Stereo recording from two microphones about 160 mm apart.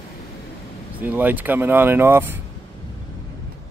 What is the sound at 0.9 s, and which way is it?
Speech, 10° right (ahead or behind).